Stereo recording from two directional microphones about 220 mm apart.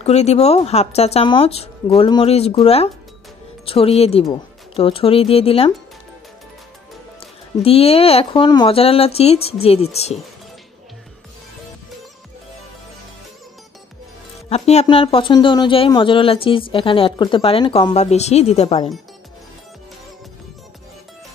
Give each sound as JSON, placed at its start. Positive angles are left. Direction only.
{"t": 0.0, "sound": "speech", "side_deg": 30}
{"t": 7.6, "sound": "speech", "side_deg": 25}
{"t": 14.5, "sound": "speech", "side_deg": 30}